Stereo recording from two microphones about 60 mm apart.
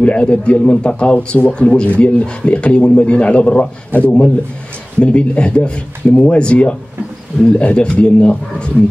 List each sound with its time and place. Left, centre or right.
0.0 s a man's voice: left